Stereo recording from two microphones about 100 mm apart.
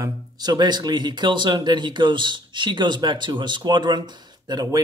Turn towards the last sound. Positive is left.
turn(degrees=-45)  # may be behind; listen again after turning